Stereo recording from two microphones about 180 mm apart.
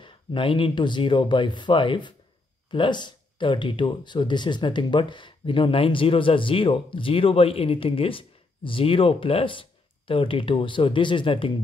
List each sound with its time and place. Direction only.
0.0 s speech: 30° left (ahead or behind)